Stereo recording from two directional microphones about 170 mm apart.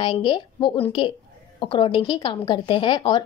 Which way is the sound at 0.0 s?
30° left (ahead or behind).